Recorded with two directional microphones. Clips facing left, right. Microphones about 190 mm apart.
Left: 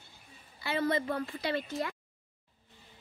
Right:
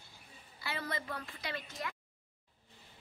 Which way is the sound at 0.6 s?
25° left (ahead or behind).